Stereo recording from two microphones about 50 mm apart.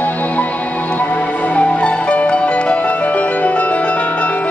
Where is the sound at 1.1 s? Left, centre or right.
Left.